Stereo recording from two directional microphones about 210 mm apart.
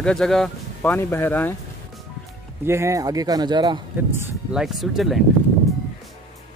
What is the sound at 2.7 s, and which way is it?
A man's voice, 15° right (ahead or behind).